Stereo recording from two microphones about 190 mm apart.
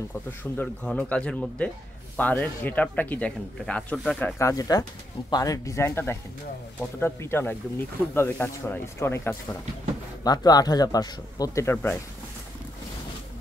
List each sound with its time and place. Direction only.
0.4 s speech: 10° left (ahead or behind)
4.4 s speech: 15° left (ahead or behind)